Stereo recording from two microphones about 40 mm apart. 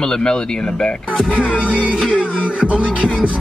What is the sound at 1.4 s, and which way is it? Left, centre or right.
Music, right.